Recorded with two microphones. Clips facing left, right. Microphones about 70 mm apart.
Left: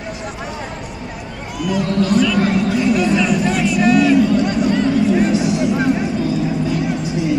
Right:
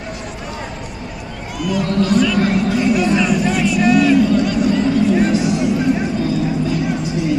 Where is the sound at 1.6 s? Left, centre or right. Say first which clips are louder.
Even; centre.